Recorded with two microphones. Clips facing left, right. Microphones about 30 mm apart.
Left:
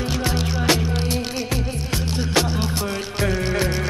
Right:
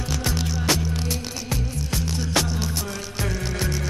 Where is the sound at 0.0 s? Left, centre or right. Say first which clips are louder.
Left 4 dB; left.